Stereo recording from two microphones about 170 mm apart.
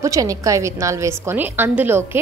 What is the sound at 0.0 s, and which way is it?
A woman's voice, 20° right (ahead or behind).